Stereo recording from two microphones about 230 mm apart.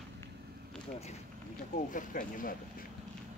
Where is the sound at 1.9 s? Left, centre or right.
Left.